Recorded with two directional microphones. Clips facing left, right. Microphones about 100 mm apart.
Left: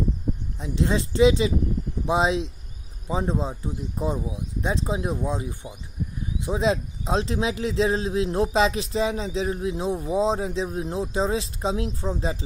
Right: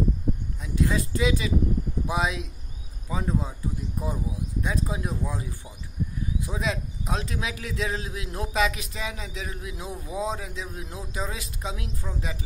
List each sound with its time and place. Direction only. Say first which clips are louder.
0.6 s speech: left 3 dB; 25° left (ahead or behind)